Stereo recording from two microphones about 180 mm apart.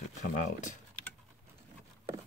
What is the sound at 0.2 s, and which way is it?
Speech, 45° left (ahead or behind).